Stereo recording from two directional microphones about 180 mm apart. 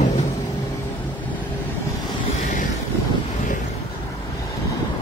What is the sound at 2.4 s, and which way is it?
Vehicle, 45° left (ahead or behind).